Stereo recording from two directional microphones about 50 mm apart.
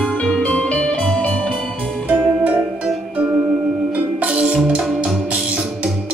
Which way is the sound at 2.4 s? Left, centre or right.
Right.